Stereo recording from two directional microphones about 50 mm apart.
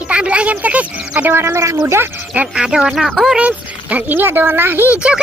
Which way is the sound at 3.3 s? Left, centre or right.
Right.